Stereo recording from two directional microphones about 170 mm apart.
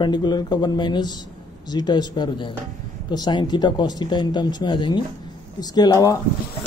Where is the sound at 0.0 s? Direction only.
25° left (ahead or behind).